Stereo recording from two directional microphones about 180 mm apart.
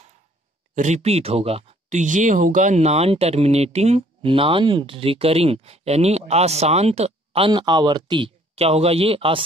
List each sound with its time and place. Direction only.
0.7 s speech: 40° right (ahead or behind)